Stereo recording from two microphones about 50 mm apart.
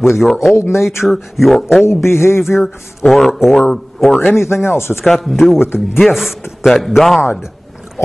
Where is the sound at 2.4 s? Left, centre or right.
Centre.